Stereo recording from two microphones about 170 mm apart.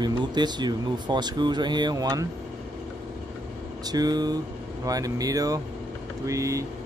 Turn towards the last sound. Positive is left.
turn(degrees=-20)  # may be behind; listen again after turning